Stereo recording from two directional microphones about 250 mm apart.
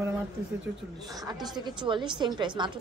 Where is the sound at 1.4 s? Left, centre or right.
Centre.